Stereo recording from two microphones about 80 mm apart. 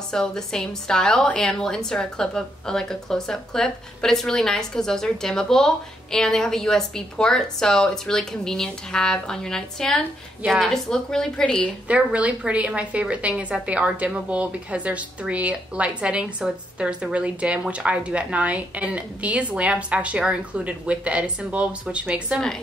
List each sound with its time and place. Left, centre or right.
0.1 s a woman's voice: centre
11.9 s a woman's voice: centre